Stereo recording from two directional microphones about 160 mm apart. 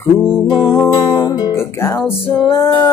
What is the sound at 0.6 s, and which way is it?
Music, centre (ahead or behind).